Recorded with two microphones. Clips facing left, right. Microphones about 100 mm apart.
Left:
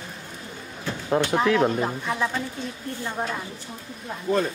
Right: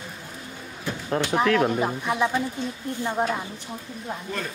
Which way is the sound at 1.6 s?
10° right (ahead or behind).